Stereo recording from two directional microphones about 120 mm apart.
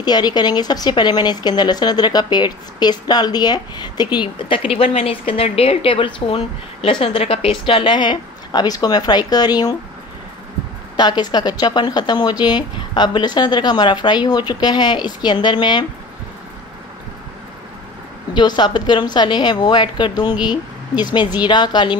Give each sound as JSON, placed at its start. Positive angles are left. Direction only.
{"t": 0.0, "sound": "speech", "side_deg": 35}
{"t": 11.0, "sound": "speech", "side_deg": 35}
{"t": 18.3, "sound": "speech", "side_deg": 40}